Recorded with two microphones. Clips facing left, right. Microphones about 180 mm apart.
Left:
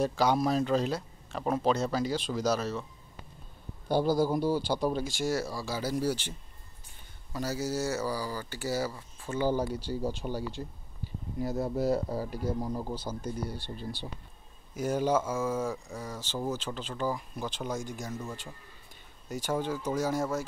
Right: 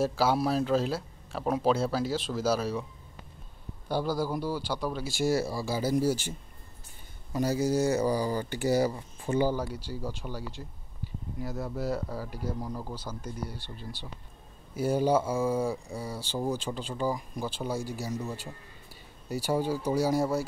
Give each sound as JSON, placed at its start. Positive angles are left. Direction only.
{"t": 0.0, "sound": "speech", "side_deg": -5}
{"t": 3.9, "sound": "a man's voice", "side_deg": 20}
{"t": 5.0, "sound": "speech", "side_deg": -10}
{"t": 7.3, "sound": "speech", "side_deg": -15}
{"t": 9.9, "sound": "a man's voice", "side_deg": 30}
{"t": 12.5, "sound": "a man's voice", "side_deg": 10}
{"t": 12.9, "sound": "a man's voice", "side_deg": 25}
{"t": 14.8, "sound": "speech", "side_deg": -10}